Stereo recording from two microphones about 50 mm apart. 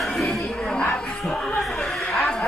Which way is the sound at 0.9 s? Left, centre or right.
Centre.